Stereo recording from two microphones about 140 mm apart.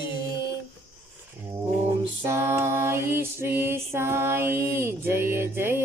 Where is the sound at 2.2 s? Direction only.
15° right (ahead or behind).